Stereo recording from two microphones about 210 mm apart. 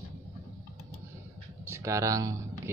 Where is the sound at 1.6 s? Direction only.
15° right (ahead or behind).